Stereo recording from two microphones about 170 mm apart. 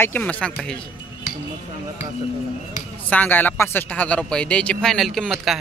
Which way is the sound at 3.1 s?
10° left (ahead or behind).